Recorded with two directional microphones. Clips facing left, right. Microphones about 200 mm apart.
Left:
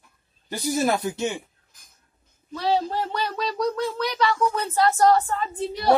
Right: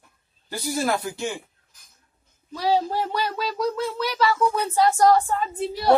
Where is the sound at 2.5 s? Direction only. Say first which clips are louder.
Right 1 dB; 10° right (ahead or behind).